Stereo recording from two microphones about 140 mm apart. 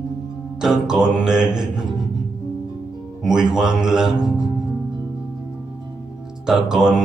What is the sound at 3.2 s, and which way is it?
Speech, 5° right (ahead or behind).